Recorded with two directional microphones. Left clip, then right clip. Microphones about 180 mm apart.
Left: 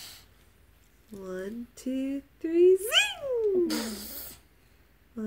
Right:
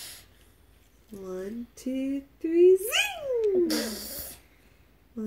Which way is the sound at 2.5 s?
10° left (ahead or behind).